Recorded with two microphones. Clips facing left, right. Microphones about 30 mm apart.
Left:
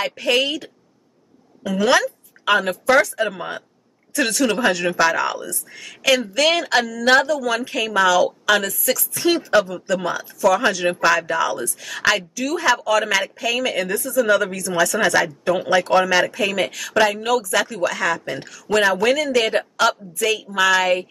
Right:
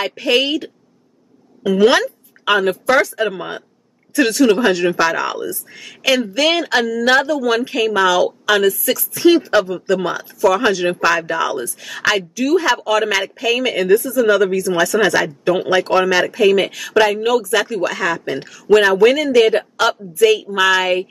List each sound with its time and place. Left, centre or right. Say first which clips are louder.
0.1 s speech: right 3 dB; centre
2.4 s speech: right 2 dB; centre